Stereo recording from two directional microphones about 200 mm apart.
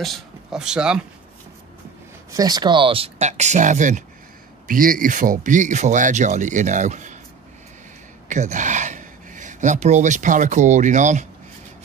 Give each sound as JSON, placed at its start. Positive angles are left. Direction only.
{"t": 0.0, "sound": "speech", "side_deg": 0}
{"t": 2.3, "sound": "speech", "side_deg": -20}
{"t": 8.3, "sound": "speech", "side_deg": -40}